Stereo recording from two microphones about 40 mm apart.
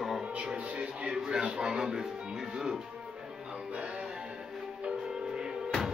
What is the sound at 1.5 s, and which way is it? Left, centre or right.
Speech, centre.